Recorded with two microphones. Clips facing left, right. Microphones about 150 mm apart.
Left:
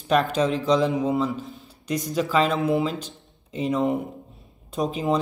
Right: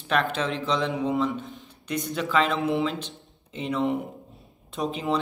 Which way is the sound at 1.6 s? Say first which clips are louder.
Left 4 dB; 35° left (ahead or behind).